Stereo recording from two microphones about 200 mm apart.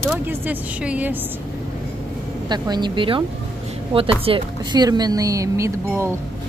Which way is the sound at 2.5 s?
20° right (ahead or behind).